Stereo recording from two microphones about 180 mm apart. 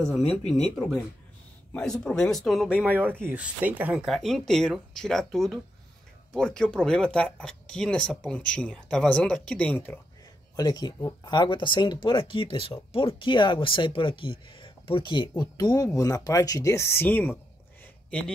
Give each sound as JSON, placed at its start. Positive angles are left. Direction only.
{"t": 0.0, "sound": "speech", "side_deg": 5}
{"t": 10.5, "sound": "speech", "side_deg": 20}